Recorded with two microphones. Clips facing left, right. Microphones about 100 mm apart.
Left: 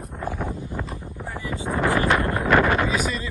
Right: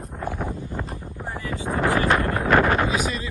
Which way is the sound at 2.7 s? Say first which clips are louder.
Even; 40° right (ahead or behind).